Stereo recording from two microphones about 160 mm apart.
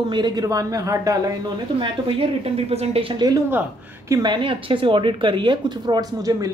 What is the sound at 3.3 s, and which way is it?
Speech, 15° right (ahead or behind).